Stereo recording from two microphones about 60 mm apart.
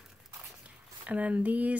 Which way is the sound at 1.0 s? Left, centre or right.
Right.